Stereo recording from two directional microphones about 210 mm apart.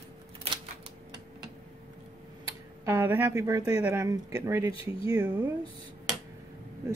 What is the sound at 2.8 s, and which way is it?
Speech, 10° right (ahead or behind).